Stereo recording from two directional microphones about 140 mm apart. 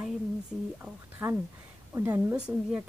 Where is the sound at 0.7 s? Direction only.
15° right (ahead or behind).